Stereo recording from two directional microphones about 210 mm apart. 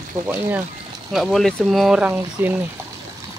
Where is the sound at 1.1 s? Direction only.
Centre (ahead or behind).